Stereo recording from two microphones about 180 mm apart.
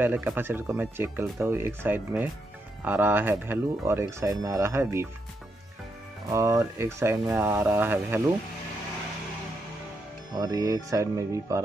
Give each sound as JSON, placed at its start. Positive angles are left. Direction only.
{"t": 0.0, "sound": "speech", "side_deg": -10}
{"t": 6.2, "sound": "speech", "side_deg": -15}
{"t": 10.3, "sound": "speech", "side_deg": -20}